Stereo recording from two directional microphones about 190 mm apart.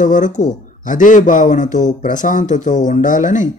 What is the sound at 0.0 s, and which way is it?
Speech, 40° left (ahead or behind).